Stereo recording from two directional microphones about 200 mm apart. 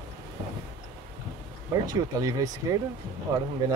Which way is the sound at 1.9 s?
15° right (ahead or behind).